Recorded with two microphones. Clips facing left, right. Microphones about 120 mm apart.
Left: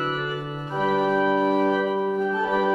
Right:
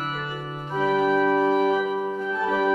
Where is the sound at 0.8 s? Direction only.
15° left (ahead or behind).